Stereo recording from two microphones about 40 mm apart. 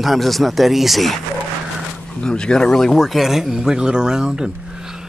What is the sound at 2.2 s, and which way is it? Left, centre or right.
Speech, left.